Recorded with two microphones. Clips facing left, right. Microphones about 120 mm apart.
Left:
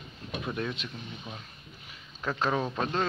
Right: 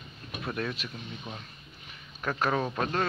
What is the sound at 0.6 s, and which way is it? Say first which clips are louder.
Speech: right 2 dB; 20° left (ahead or behind).